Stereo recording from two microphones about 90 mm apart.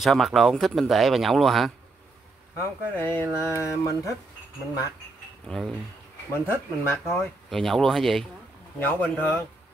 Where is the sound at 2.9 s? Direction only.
20° left (ahead or behind).